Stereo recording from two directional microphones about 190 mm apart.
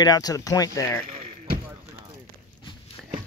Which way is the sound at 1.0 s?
45° right (ahead or behind).